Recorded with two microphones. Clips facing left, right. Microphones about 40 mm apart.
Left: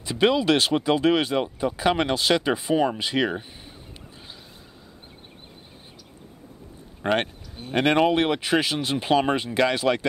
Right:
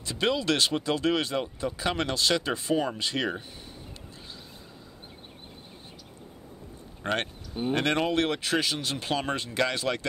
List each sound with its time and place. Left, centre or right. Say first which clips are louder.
0.0 s speech: left 6 dB; centre
7.0 s speech: left 6 dB; left